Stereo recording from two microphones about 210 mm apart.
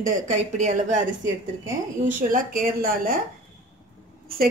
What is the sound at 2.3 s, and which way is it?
Speech, 40° right (ahead or behind).